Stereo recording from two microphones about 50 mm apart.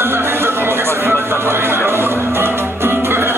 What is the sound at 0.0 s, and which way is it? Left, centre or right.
Music, right.